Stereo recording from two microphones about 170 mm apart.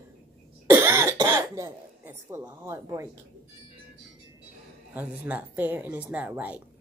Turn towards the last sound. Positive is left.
turn(degrees=-10)  # may be behind; listen again after turning